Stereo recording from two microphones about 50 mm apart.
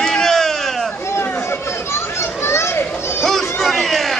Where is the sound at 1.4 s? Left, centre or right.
Left.